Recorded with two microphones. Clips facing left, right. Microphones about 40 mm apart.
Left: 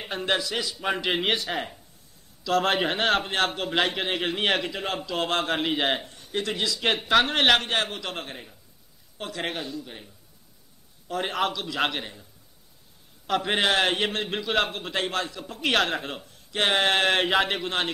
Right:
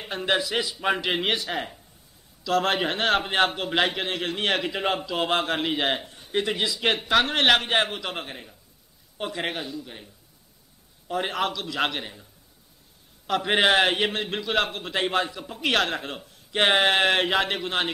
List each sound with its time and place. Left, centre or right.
0.4 s a man's voice: centre
3.3 s a man's voice: centre
4.6 s a man's voice: centre
6.1 s speech: centre
6.9 s a man's voice: centre
13.3 s a man's voice: centre
13.6 s a man's voice: centre
13.8 s a man's voice: centre
15.0 s a man's voice: centre
16.5 s a sound: right
16.8 s a man's voice: centre